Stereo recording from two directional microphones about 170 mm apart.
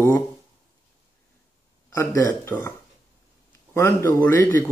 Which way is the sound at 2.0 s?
15° left (ahead or behind).